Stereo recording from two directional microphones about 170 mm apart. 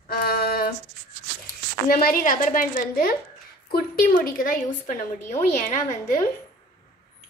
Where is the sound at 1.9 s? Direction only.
60° left (ahead or behind).